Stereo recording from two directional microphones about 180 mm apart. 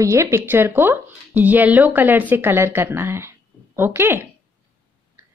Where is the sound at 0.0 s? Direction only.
15° right (ahead or behind).